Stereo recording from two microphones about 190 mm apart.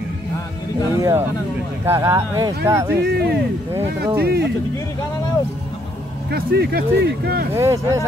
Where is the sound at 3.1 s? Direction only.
60° right (ahead or behind).